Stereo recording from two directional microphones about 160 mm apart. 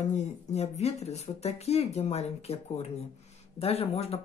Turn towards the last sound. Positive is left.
turn(degrees=40)  # may be behind; listen again after turning